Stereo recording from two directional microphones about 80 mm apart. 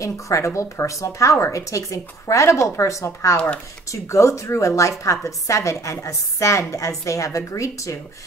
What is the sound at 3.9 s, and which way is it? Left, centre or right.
A woman's voice, left.